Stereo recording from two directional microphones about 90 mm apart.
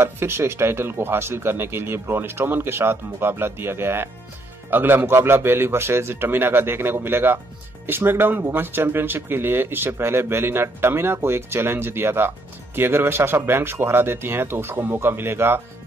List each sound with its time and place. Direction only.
0.0 s speech: 30° right (ahead or behind)